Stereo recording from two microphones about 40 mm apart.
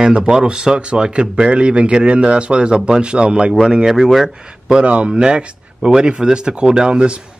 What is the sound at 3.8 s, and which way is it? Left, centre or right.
Speech, centre.